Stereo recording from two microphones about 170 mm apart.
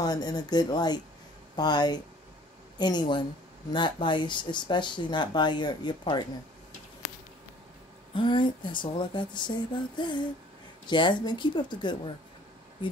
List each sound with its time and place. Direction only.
0.0 s speech: 25° left (ahead or behind)
8.1 s speech: 30° left (ahead or behind)